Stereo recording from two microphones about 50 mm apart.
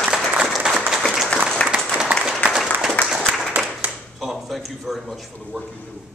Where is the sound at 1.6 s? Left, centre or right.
Left.